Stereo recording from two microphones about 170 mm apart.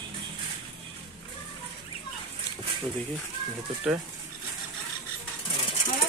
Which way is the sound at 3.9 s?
5° right (ahead or behind).